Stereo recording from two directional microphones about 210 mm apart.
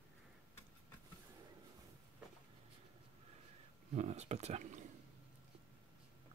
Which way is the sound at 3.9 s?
35° right (ahead or behind).